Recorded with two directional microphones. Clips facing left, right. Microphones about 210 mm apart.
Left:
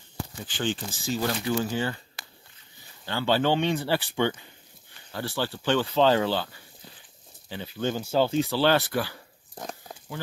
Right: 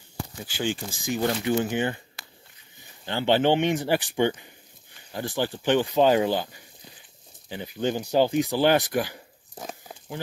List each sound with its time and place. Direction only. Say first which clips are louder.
0.5 s speech: right 1 dB; 10° right (ahead or behind)
3.1 s speech: right 3 dB; 20° right (ahead or behind)
9.6 s a sound: even; 5° right (ahead or behind)